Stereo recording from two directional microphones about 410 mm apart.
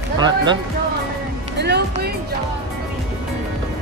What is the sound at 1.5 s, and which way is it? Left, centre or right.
Music, right.